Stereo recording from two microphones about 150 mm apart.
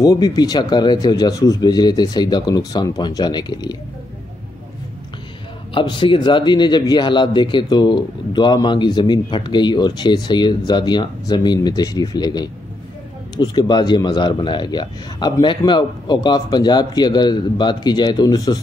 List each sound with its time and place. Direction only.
0.0 s a man's voice: 25° left (ahead or behind)
5.8 s a man's voice: 35° left (ahead or behind)